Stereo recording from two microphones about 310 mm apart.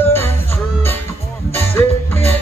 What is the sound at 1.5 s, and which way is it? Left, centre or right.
Music, centre.